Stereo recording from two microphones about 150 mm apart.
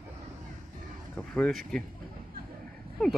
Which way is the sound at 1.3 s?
5° left (ahead or behind).